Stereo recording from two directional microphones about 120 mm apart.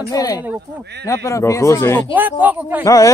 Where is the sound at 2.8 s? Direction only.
30° left (ahead or behind).